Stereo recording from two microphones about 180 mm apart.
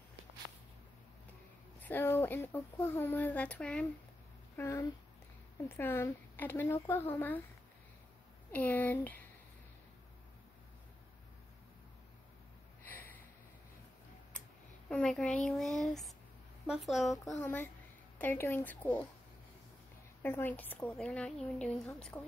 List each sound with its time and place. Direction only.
1.8 s speech: 10° left (ahead or behind)
8.5 s speech: 10° left (ahead or behind)
12.8 s a sound: 10° left (ahead or behind)
14.9 s a child's voice: 5° left (ahead or behind)
17.4 s speech: 10° left (ahead or behind)
20.2 s speech: 10° left (ahead or behind)